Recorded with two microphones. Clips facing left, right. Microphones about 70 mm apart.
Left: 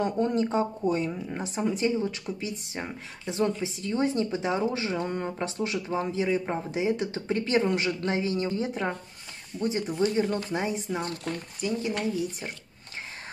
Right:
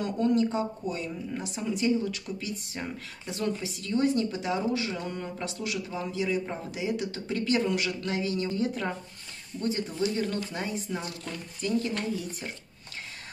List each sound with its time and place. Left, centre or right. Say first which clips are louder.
0.0 s a woman's voice: even; left